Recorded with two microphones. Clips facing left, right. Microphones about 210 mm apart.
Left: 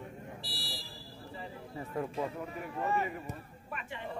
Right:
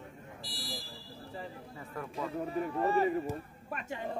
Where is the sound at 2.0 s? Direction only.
25° left (ahead or behind).